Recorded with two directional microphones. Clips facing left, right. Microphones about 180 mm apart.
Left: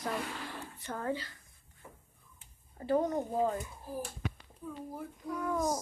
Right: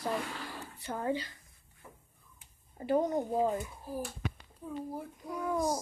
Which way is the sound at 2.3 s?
15° right (ahead or behind).